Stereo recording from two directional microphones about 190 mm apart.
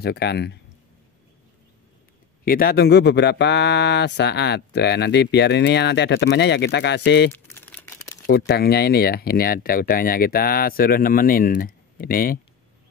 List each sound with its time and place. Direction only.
0.0 s speech: 60° left (ahead or behind)
2.4 s speech: 50° left (ahead or behind)
7.3 s crumpling: 10° left (ahead or behind)
8.3 s speech: 55° left (ahead or behind)